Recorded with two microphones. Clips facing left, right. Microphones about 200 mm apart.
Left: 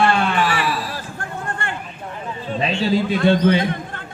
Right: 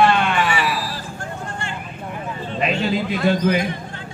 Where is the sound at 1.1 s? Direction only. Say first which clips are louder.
Left 2 dB; 55° left (ahead or behind).